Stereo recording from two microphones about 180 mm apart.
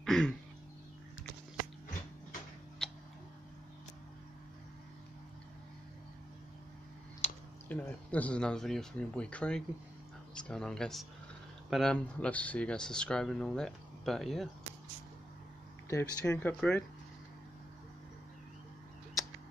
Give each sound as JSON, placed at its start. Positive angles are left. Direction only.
{"t": 0.0, "sound": "a sound", "side_deg": 0}
{"t": 7.2, "sound": "typing", "side_deg": 40}
{"t": 7.6, "sound": "speech", "side_deg": 10}
{"t": 15.9, "sound": "speech", "side_deg": 15}